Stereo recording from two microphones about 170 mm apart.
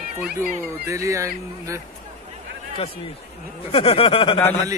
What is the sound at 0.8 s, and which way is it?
Speech, 20° right (ahead or behind).